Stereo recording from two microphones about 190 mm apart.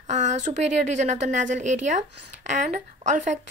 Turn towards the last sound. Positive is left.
turn(degrees=-40)  # may be behind; listen again after turning